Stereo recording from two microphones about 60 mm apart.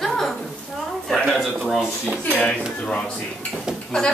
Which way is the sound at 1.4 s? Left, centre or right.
Centre.